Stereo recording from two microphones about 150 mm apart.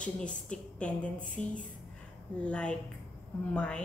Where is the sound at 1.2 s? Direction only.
60° left (ahead or behind).